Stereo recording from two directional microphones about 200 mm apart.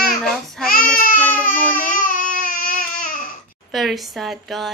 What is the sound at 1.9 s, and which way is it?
Baby cry, 45° left (ahead or behind).